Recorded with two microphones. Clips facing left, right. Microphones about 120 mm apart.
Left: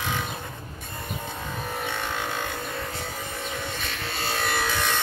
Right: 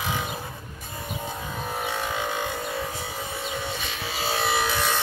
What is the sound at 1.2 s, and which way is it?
Music, 5° right (ahead or behind).